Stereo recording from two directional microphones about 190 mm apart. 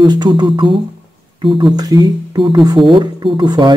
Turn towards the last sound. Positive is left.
turn(degrees=-25)  # may be behind; listen again after turning